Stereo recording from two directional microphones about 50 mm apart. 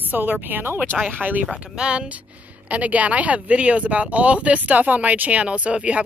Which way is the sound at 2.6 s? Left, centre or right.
Right.